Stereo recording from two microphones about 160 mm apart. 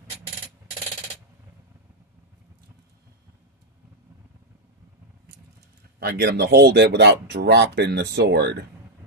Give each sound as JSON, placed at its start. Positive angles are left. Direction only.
{"t": 5.9, "sound": "speech", "side_deg": -80}